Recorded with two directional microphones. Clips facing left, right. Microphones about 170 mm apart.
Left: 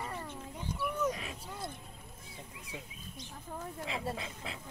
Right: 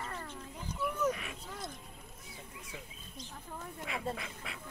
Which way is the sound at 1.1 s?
30° left (ahead or behind).